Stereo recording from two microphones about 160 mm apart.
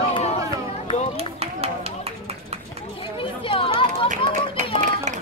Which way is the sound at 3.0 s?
35° left (ahead or behind).